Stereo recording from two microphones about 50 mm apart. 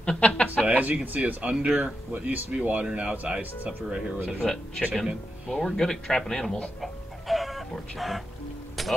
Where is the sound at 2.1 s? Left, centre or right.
Right.